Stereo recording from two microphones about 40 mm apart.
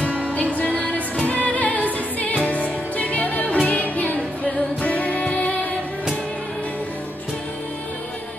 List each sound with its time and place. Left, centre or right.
0.6 s music: left